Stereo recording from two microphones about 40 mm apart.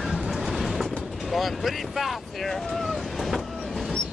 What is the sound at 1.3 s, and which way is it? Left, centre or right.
Speech, centre.